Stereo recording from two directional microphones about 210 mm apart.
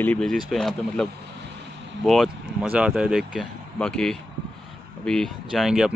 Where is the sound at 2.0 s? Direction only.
Centre (ahead or behind).